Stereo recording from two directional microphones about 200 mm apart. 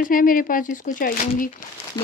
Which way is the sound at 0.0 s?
45° left (ahead or behind).